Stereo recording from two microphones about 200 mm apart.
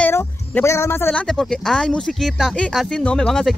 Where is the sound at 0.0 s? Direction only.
10° left (ahead or behind).